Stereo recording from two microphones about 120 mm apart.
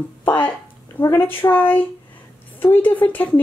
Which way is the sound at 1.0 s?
20° left (ahead or behind).